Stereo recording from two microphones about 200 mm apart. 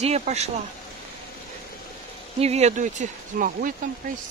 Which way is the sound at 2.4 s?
35° right (ahead or behind).